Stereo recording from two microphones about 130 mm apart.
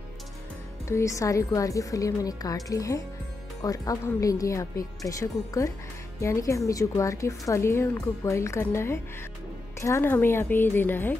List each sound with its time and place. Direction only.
0.8 s a woman's voice: 25° left (ahead or behind)